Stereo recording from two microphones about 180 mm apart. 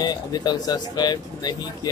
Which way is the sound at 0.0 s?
20° left (ahead or behind).